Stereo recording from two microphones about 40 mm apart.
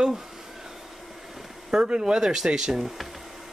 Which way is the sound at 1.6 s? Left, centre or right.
Right.